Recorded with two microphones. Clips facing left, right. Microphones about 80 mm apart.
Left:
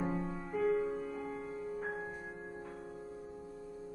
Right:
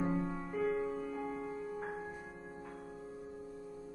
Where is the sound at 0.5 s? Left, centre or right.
Centre.